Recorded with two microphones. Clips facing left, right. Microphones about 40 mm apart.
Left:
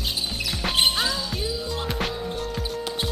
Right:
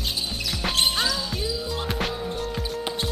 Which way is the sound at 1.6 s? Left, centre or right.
Centre.